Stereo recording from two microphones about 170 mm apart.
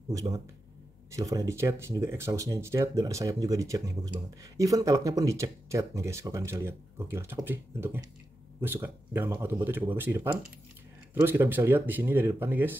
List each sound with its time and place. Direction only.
0.1 s speech: 20° right (ahead or behind)